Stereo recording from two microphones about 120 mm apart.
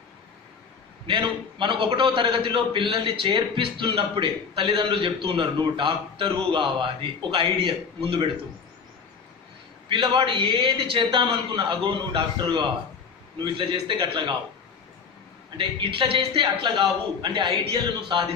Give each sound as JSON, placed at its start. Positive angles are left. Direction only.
{"t": 1.0, "sound": "a man's voice", "side_deg": -40}
{"t": 9.8, "sound": "a man's voice", "side_deg": -45}
{"t": 15.5, "sound": "a man's voice", "side_deg": -45}